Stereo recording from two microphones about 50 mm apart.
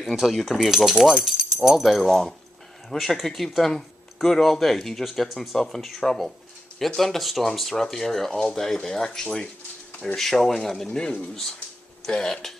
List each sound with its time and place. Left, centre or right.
0.0 s speech: centre
10.9 s speech: centre